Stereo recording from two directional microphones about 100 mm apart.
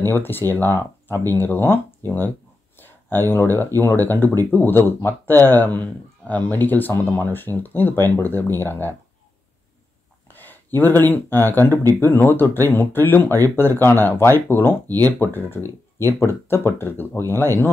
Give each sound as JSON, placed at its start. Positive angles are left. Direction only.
{"t": 0.0, "sound": "speech", "side_deg": 20}
{"t": 10.2, "sound": "a sound", "side_deg": 20}
{"t": 11.1, "sound": "speech", "side_deg": 20}